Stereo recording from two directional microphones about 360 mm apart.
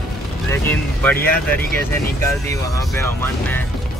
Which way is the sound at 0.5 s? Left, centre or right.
Centre.